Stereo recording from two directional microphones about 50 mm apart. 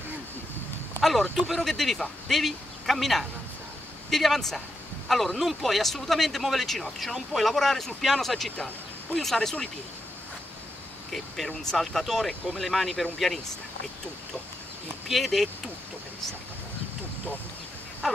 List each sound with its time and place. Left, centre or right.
1.3 s speech: centre
11.1 s speech: centre
15.0 s speech: centre
18.0 s a sound: centre